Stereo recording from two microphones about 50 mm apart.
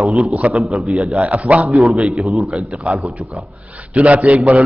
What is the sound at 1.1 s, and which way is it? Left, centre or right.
Speech, right.